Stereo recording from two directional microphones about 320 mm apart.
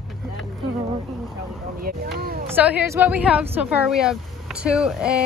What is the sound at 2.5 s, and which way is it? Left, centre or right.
Speech, centre.